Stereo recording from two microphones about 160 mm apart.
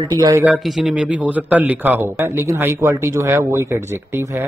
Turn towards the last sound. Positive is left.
turn(degrees=-15)  # may be behind; listen again after turning